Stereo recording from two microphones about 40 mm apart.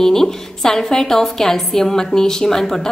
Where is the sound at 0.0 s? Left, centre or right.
Centre.